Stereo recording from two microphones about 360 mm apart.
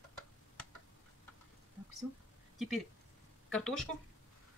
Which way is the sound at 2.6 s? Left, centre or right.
Centre.